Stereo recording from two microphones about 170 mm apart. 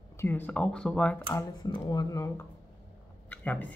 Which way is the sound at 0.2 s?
10° left (ahead or behind).